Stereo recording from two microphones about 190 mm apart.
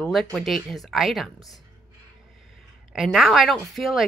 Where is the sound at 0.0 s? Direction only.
Centre (ahead or behind).